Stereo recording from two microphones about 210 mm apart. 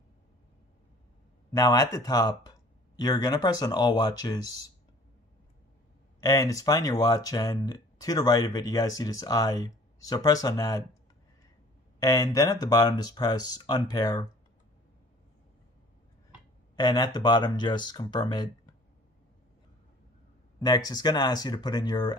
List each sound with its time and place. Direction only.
1.5 s speech: 15° left (ahead or behind)
6.2 s speech: 15° left (ahead or behind)
12.0 s speech: 15° left (ahead or behind)
16.7 s speech: 20° left (ahead or behind)
20.5 s speech: 20° left (ahead or behind)